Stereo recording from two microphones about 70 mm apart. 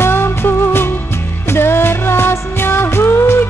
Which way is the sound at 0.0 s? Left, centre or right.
Left.